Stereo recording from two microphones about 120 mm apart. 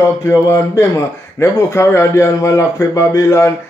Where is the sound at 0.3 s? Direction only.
25° left (ahead or behind).